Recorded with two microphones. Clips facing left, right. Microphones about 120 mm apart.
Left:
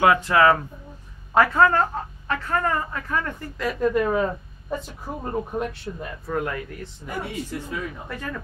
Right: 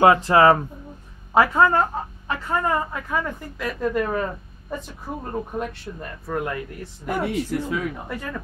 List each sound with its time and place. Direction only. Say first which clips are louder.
0.0 s speech: right 3 dB; 30° right (ahead or behind)
1.3 s a woman's voice: right 1 dB; 15° right (ahead or behind)
7.1 s speech: right 7 dB; 75° right (ahead or behind)